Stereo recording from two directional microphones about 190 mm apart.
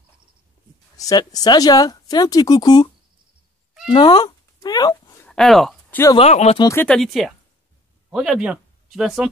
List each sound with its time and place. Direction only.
0.9 s speech: 20° left (ahead or behind)
3.9 s cat: 20° left (ahead or behind)
5.2 s a sound: 5° left (ahead or behind)
6.1 s speech: 35° left (ahead or behind)
6.6 s speech: 10° left (ahead or behind); by 9.3 s 5° right (ahead or behind)